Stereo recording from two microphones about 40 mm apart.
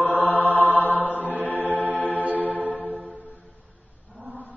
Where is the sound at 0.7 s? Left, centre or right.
Left.